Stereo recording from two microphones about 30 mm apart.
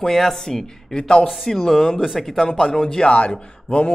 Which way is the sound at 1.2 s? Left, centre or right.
Centre.